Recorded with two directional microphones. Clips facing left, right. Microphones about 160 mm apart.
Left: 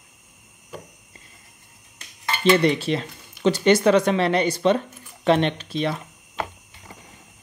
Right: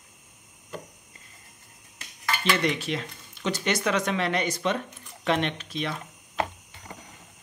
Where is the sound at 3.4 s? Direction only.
30° left (ahead or behind).